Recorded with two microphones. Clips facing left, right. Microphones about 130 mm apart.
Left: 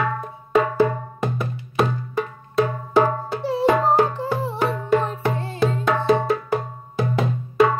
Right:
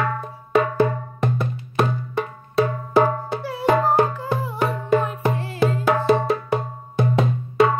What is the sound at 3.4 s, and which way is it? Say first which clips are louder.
Music: left 6 dB; 25° left (ahead or behind).